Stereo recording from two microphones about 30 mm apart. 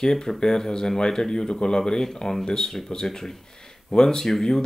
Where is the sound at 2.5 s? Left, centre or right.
Centre.